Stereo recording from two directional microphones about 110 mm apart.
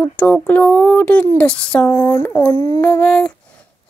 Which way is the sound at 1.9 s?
20° left (ahead or behind).